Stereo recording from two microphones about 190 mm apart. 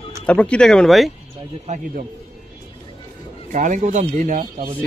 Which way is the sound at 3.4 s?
40° right (ahead or behind).